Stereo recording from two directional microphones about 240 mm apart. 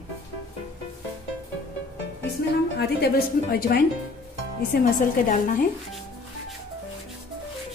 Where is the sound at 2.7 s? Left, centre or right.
Left.